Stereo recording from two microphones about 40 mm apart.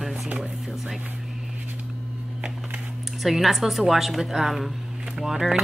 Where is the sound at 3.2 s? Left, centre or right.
Centre.